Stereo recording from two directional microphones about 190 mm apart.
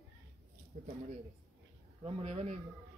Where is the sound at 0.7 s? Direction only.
45° right (ahead or behind).